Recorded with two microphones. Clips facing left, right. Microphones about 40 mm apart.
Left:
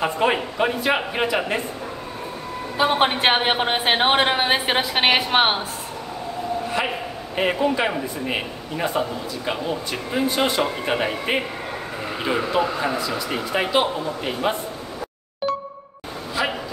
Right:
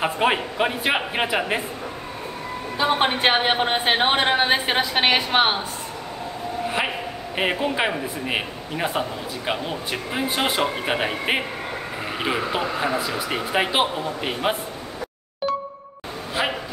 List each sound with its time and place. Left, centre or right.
0.0 s speech: centre
2.8 s a woman's voice: centre
7.3 s speech: centre
15.4 s music: centre
16.4 s a sound: right